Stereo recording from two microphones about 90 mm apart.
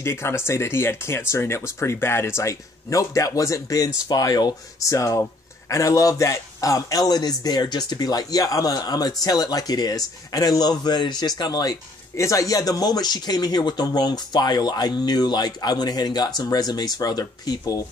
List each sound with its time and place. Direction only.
0.0 s speech: 30° left (ahead or behind); by 4.6 s 45° left (ahead or behind)
4.8 s speech: 35° left (ahead or behind)
12.2 s speech: 40° left (ahead or behind)